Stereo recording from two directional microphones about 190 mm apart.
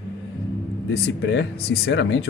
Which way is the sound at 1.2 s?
65° left (ahead or behind).